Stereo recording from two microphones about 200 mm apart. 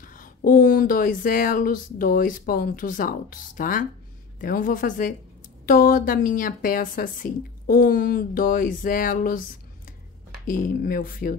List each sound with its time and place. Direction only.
0.0 s a woman's voice: 45° left (ahead or behind)